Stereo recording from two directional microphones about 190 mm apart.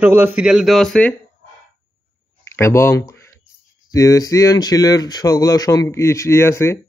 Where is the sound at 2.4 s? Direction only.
15° left (ahead or behind).